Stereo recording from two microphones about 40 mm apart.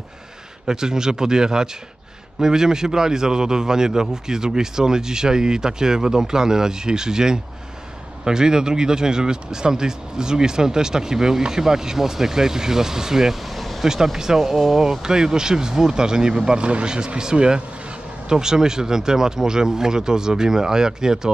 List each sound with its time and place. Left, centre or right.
0.7 s speech: centre
14.1 s speech: centre
14.9 s speech: centre